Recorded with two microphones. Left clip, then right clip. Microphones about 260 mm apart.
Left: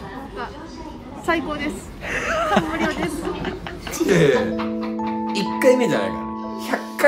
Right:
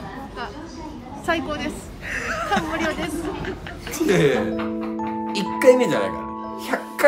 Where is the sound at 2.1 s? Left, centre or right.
Left.